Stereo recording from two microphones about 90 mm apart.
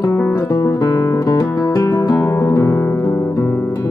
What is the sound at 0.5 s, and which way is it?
Music, 40° left (ahead or behind).